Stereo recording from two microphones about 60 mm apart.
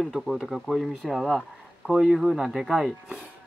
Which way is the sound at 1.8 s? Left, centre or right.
Centre.